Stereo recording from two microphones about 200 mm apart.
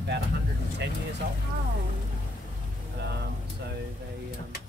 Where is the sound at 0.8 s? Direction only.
60° right (ahead or behind).